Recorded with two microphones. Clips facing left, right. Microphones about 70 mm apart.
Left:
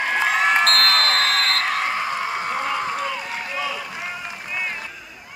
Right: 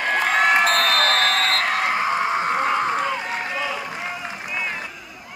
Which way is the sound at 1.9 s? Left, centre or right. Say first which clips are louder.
Right 3 dB; right.